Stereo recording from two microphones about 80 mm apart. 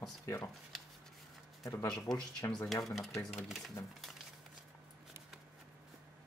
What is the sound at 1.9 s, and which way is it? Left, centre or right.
Speech, centre.